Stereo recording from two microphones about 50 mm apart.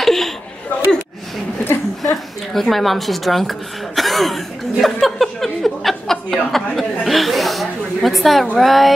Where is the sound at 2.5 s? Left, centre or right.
Centre.